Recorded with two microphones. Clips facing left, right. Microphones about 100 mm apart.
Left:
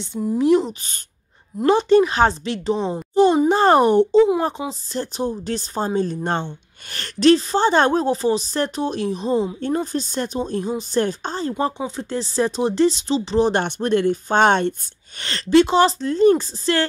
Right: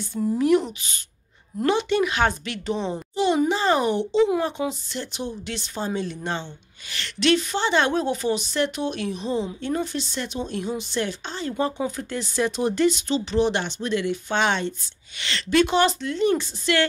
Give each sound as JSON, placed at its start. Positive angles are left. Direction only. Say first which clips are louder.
{"t": 0.0, "sound": "speech", "louder": "left 3 dB", "side_deg": 25}
{"t": 3.4, "sound": "speech", "louder": "left 7 dB", "side_deg": 50}
{"t": 4.4, "sound": "speech", "louder": "left 2 dB", "side_deg": 35}
{"t": 13.5, "sound": "speech", "louder": "left 5 dB", "side_deg": 45}
{"t": 15.5, "sound": "speech", "louder": "left 5 dB", "side_deg": 30}